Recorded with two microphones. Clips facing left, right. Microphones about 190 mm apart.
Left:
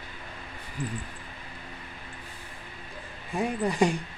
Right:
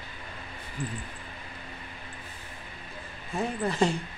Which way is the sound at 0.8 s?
Centre (ahead or behind).